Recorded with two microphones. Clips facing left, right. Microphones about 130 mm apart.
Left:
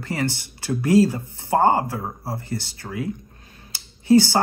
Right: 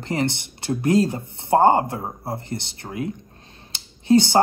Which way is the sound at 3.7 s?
20° right (ahead or behind).